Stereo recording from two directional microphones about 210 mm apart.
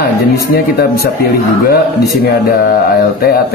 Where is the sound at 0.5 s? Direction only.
50° left (ahead or behind).